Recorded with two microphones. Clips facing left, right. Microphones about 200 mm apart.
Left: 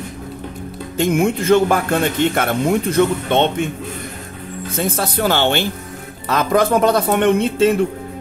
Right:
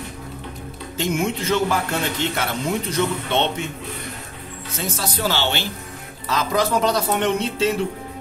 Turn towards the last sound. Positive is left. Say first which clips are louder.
# left 7 dB
turn(degrees=55)  # may be behind; listen again after turning